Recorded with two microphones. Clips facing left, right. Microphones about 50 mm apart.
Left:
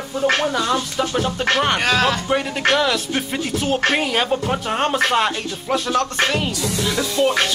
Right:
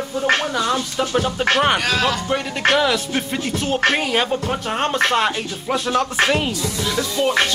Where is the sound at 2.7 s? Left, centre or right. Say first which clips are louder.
Right 1 dB; centre.